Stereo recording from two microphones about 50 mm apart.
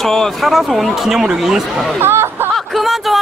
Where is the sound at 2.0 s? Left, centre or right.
Right.